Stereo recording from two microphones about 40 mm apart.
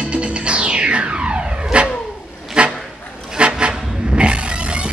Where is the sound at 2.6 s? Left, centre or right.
Right.